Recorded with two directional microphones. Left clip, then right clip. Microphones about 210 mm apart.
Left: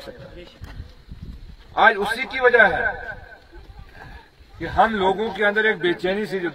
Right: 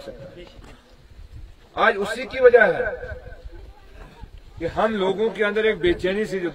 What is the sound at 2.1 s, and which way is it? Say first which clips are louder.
Speech: left 3 dB; 35° left (ahead or behind).